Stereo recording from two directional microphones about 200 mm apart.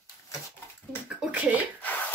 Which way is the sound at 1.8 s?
10° left (ahead or behind).